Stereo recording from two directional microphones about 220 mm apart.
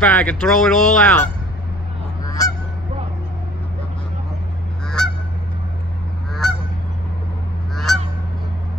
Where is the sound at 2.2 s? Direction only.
15° left (ahead or behind).